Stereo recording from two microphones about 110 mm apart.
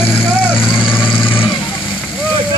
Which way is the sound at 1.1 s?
50° left (ahead or behind).